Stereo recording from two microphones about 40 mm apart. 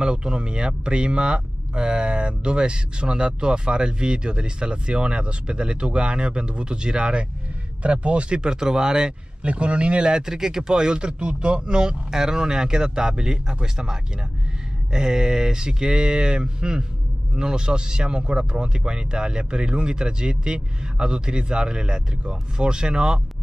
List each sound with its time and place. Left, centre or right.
0.0 s speech: right
9.4 s speech: right